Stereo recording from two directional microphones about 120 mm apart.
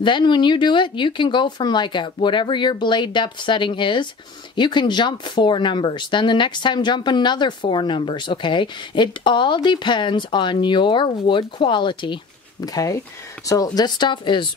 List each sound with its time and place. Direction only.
0.0 s speech: 40° left (ahead or behind)